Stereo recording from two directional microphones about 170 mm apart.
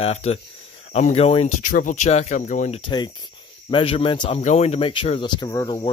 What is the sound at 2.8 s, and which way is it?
Speech, 25° left (ahead or behind).